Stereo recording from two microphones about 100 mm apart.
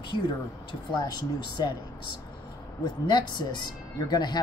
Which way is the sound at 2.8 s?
50° left (ahead or behind).